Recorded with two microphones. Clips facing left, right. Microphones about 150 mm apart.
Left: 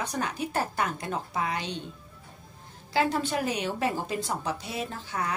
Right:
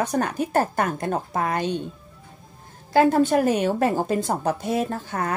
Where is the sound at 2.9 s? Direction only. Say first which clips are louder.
Right 9 dB; 50° right (ahead or behind).